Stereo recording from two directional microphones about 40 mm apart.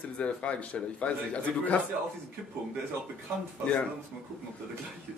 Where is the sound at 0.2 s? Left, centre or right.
Left.